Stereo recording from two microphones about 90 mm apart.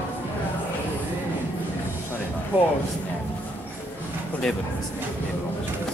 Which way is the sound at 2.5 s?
20° right (ahead or behind).